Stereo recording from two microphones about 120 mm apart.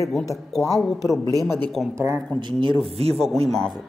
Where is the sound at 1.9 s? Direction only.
20° right (ahead or behind).